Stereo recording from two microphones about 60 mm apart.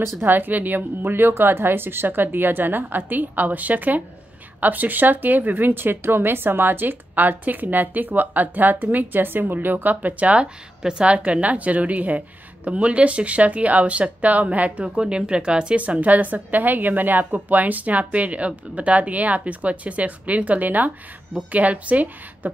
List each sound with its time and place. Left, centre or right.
0.2 s speech: right